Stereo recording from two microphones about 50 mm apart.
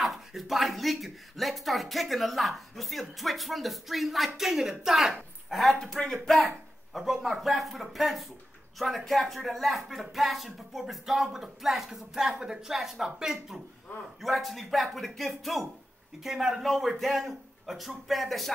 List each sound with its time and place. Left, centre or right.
0.0 s speech: centre
11.2 s a woman's voice: centre